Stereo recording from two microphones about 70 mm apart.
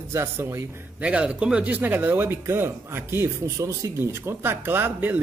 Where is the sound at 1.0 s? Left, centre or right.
Centre; by 3.2 s right.